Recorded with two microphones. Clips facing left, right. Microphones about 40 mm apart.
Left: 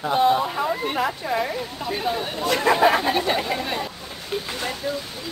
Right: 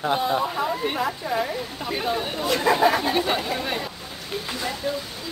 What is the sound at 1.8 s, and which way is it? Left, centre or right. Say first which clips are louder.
Speech: even; centre.